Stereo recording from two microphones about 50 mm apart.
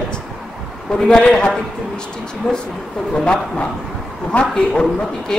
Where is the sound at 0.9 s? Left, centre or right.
Centre.